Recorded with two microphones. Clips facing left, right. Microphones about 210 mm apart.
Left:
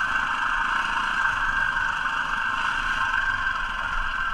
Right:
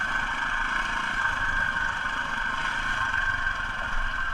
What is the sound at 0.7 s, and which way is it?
Vehicle, 10° right (ahead or behind).